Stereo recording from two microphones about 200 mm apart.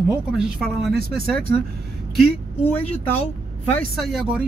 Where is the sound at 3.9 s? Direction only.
Centre (ahead or behind).